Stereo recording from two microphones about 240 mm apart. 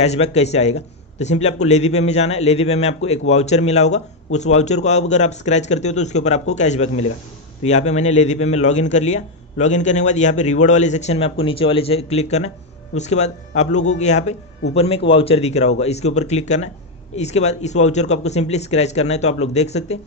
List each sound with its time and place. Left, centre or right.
0.0 s a man's voice: left